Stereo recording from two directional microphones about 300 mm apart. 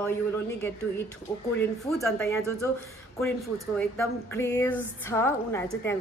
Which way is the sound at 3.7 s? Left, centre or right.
Centre.